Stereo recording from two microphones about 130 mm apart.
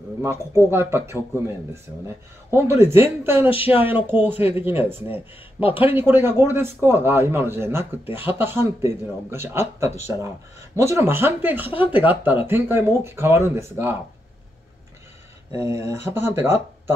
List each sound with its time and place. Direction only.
0.2 s a man's voice: 20° right (ahead or behind)
15.5 s speech: 25° right (ahead or behind)